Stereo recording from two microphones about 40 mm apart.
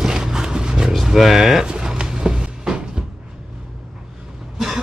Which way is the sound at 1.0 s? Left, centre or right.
Centre.